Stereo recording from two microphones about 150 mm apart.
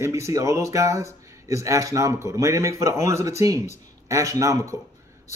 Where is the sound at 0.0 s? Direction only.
20° right (ahead or behind).